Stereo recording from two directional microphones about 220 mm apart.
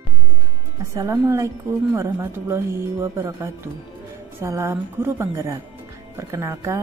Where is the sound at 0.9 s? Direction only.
15° right (ahead or behind).